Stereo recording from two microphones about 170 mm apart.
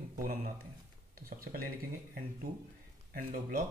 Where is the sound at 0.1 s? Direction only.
55° right (ahead or behind).